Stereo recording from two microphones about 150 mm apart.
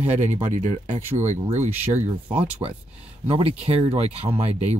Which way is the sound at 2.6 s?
35° right (ahead or behind).